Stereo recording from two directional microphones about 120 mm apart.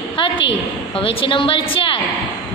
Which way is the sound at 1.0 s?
50° left (ahead or behind).